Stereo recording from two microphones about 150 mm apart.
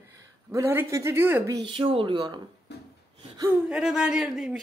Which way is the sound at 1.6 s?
35° right (ahead or behind).